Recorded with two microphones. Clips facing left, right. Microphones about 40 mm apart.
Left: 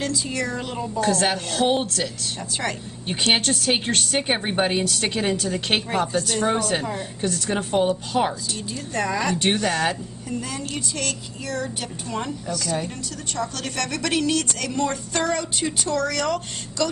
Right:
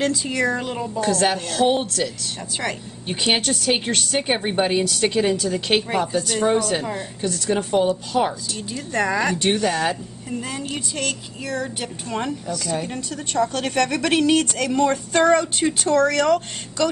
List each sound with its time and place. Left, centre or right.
0.3 s speech: right
1.0 s a woman's voice: centre
5.9 s a woman's voice: centre
8.9 s speech: right
9.4 s a woman's voice: centre
10.5 s speech: centre
12.8 s speech: right
14.1 s speech: right
16.2 s speech: centre